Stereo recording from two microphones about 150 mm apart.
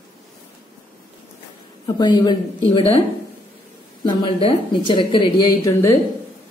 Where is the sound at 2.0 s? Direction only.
30° left (ahead or behind).